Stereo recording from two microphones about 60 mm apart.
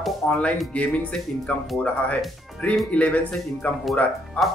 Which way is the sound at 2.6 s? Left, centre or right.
Left.